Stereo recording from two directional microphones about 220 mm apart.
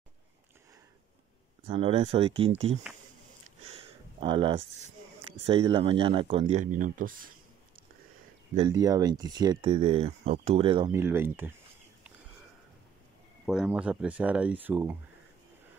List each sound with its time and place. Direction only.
1.7 s speech: 25° right (ahead or behind)
3.6 s a sound: 25° right (ahead or behind)
5.5 s speech: 25° right (ahead or behind)
8.5 s speech: 20° right (ahead or behind)
11.0 s speech: 10° right (ahead or behind)
13.5 s speech: 5° right (ahead or behind)